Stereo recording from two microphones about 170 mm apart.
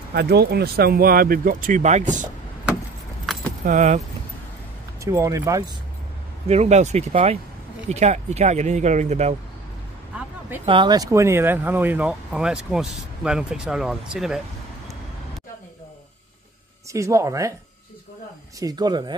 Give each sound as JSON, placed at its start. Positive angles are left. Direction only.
{"t": 0.1, "sound": "speech", "side_deg": -70}
{"t": 3.3, "sound": "keys jangling", "side_deg": 0}
{"t": 3.6, "sound": "speech", "side_deg": -45}
{"t": 5.0, "sound": "speech", "side_deg": -15}
{"t": 6.4, "sound": "speech", "side_deg": -40}
{"t": 10.6, "sound": "speech", "side_deg": -30}
{"t": 16.9, "sound": "speech", "side_deg": -20}
{"t": 18.6, "sound": "speech", "side_deg": -20}